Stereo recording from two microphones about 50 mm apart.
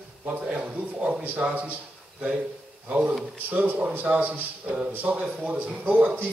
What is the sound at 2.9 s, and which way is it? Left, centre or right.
A man's voice, right.